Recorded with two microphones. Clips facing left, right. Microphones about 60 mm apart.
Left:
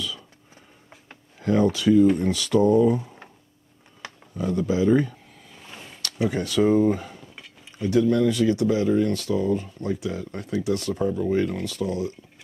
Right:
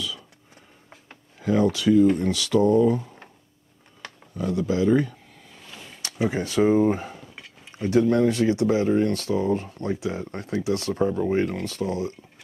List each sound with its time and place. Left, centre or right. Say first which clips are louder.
1.4 s speech: left 1 dB; centre
4.0 s a sound: left 1 dB; centre
6.2 s speech: even; right
9.9 s speech: right 1 dB; right